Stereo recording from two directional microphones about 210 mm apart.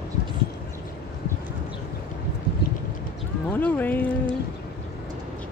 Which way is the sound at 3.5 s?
10° left (ahead or behind).